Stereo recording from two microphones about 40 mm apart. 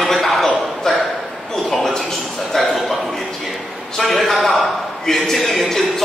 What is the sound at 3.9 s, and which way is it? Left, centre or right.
A man's voice, centre.